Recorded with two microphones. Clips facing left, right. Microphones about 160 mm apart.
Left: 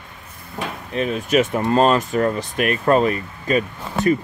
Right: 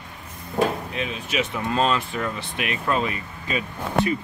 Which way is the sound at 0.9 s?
45° left (ahead or behind).